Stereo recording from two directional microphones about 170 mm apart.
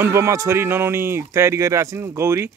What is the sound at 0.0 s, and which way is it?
Speech, 15° right (ahead or behind).